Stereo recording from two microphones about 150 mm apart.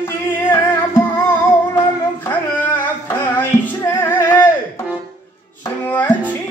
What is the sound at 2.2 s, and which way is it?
Music, 15° left (ahead or behind).